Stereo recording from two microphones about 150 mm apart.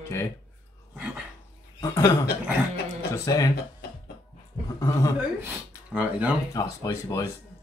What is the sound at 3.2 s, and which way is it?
Speech, 25° left (ahead or behind).